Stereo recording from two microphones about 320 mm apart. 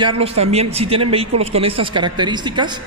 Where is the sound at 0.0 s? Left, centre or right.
Centre.